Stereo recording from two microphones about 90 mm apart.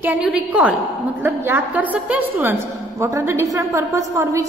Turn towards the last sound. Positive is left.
turn(degrees=-35)  # may be behind; listen again after turning